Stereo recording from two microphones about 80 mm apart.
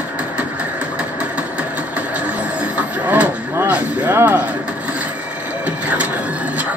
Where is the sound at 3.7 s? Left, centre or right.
Right.